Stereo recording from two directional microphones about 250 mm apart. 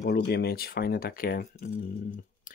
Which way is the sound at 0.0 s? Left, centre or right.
Left.